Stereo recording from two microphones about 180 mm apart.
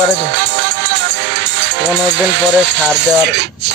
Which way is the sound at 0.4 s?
75° right (ahead or behind).